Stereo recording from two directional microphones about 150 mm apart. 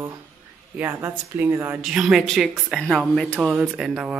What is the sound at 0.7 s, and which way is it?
Speech, 15° right (ahead or behind).